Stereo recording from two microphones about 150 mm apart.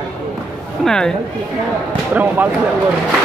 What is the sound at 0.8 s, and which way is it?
Speech, 5° left (ahead or behind).